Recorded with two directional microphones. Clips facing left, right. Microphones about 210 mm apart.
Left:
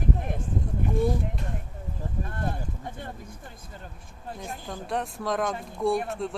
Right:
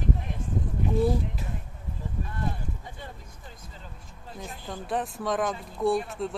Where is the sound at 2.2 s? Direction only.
55° left (ahead or behind).